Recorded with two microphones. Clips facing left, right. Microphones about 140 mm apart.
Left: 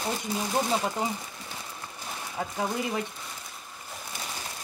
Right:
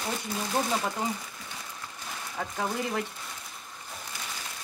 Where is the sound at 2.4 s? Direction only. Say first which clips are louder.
Left 1 dB; 15° left (ahead or behind).